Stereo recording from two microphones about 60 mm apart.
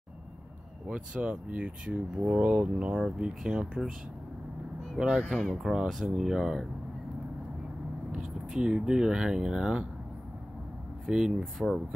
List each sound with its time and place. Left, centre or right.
0.8 s speech: centre
4.9 s speech: centre
5.3 s speech: centre
8.1 s speech: centre
11.1 s speech: centre